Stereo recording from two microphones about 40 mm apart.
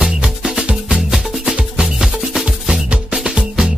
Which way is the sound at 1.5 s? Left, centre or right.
Right.